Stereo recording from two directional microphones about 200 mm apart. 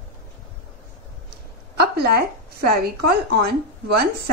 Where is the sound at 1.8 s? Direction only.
50° right (ahead or behind).